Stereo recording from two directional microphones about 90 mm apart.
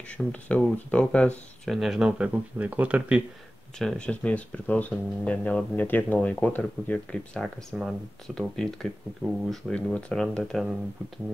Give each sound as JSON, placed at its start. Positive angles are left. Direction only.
{"t": 0.3, "sound": "speech", "side_deg": 15}
{"t": 1.7, "sound": "speech", "side_deg": -5}
{"t": 3.7, "sound": "speech", "side_deg": 10}
{"t": 7.7, "sound": "speech", "side_deg": 0}